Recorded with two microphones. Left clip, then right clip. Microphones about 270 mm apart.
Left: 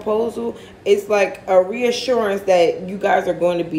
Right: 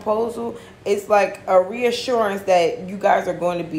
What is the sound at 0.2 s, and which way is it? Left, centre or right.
Speech, centre.